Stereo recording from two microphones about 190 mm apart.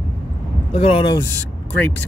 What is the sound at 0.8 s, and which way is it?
Speech, 30° left (ahead or behind).